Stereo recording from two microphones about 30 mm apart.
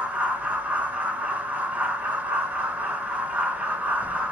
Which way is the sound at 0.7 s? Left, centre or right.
Right.